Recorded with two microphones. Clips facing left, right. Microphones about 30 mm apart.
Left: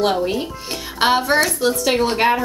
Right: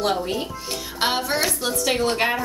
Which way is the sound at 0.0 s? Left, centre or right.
Left.